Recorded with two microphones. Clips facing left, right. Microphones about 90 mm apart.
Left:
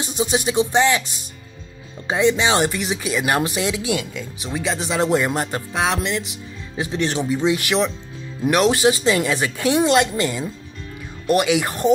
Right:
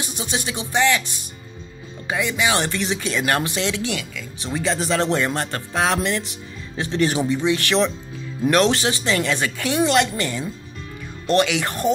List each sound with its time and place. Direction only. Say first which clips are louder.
0.0 s speech: left 6 dB; 20° left (ahead or behind)
2.7 s speech: even; 10° left (ahead or behind); by 4.3 s 25° left (ahead or behind)
4.4 s speech: right 2 dB; 5° left (ahead or behind)
5.7 s music: right 3 dB; centre (ahead or behind)
7.2 s speech: left 1 dB; 15° left (ahead or behind)